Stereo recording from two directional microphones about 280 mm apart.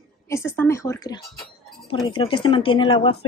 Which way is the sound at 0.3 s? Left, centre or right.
Centre.